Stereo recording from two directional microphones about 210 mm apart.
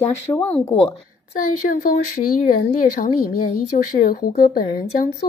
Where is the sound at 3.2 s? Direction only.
90° left.